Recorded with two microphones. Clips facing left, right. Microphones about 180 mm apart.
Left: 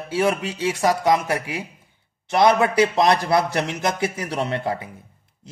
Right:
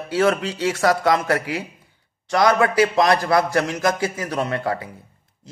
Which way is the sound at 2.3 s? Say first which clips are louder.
Even; 25° left (ahead or behind).